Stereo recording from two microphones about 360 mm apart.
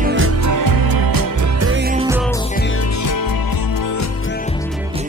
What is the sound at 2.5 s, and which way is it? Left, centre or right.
Music, left.